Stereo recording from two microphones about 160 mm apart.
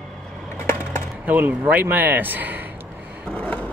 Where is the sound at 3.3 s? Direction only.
10° left (ahead or behind).